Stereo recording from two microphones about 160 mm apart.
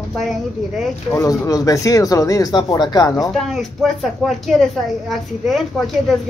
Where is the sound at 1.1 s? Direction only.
20° left (ahead or behind).